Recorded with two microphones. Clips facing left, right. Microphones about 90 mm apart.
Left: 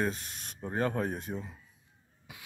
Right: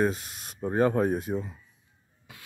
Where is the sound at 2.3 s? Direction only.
15° left (ahead or behind).